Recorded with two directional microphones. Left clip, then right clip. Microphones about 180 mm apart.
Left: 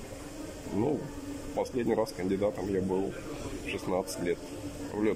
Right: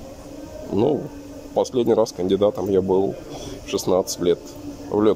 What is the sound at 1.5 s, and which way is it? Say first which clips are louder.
Speech: right 11 dB; 25° right (ahead or behind).